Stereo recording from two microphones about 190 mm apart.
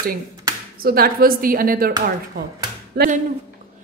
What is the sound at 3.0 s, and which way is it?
Speech, 60° right (ahead or behind).